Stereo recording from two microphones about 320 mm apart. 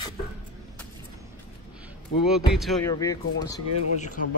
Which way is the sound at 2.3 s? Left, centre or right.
Centre.